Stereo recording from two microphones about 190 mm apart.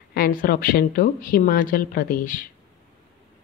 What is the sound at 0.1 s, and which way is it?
A woman's voice, 50° left (ahead or behind).